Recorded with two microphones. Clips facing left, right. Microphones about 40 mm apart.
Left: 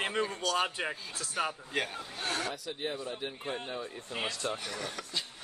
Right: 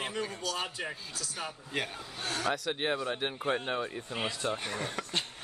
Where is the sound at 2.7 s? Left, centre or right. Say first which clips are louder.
Right 5 dB; right.